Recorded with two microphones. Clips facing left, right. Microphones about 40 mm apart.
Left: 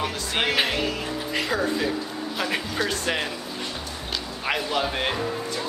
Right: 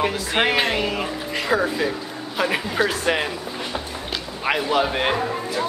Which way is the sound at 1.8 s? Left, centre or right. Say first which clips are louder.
Right 2 dB; centre.